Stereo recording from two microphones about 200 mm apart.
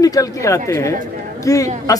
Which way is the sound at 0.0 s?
15° left (ahead or behind).